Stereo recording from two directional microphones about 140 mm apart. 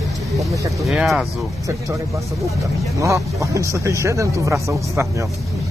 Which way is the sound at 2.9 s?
20° right (ahead or behind).